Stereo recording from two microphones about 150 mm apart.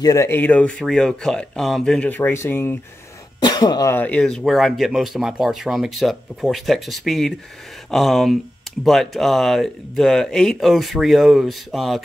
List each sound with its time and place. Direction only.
0.0 s speech: 20° left (ahead or behind)
3.3 s speech: 25° left (ahead or behind)
3.9 s speech: 10° left (ahead or behind)